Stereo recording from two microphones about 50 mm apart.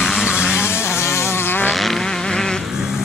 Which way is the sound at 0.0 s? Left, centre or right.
Centre.